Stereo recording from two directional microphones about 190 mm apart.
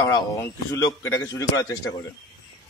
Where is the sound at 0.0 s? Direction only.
20° left (ahead or behind).